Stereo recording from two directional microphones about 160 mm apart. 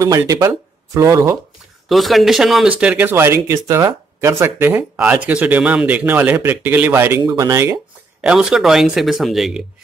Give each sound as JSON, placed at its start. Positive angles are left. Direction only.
{"t": 0.0, "sound": "speech", "side_deg": -20}
{"t": 1.9, "sound": "speech", "side_deg": 0}
{"t": 8.2, "sound": "speech", "side_deg": -5}